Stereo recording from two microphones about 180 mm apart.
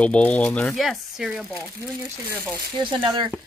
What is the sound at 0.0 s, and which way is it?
Speech, 5° left (ahead or behind).